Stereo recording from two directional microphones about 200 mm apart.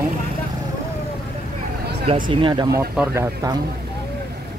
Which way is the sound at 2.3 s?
25° right (ahead or behind).